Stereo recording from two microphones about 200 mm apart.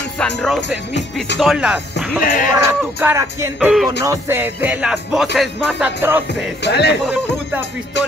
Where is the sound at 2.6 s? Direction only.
10° right (ahead or behind).